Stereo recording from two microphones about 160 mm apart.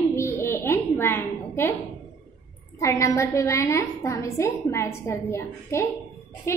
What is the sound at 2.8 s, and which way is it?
A woman's voice, 20° left (ahead or behind).